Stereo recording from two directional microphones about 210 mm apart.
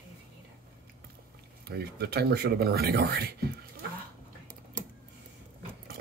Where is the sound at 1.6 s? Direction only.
50° right (ahead or behind).